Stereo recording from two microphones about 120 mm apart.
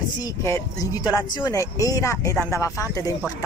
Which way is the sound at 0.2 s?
25° left (ahead or behind).